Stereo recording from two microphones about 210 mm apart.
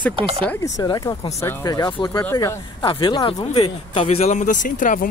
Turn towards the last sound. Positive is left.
turn(degrees=40)  # may be behind; listen again after turning